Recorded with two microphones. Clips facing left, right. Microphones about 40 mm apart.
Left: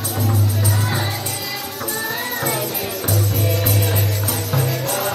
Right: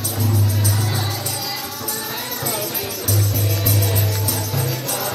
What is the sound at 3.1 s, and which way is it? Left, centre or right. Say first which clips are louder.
Music: left 2 dB; left.